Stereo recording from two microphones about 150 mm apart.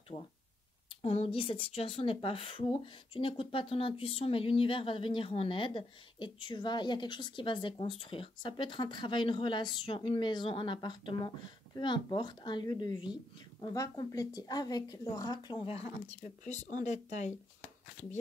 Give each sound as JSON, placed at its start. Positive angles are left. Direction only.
{"t": 1.0, "sound": "a woman's voice", "side_deg": 45}
{"t": 16.2, "sound": "speech", "side_deg": 55}